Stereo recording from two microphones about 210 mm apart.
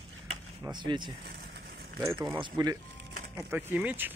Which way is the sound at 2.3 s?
20° right (ahead or behind).